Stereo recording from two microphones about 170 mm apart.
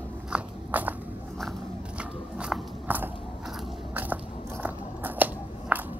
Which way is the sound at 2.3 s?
5° right (ahead or behind).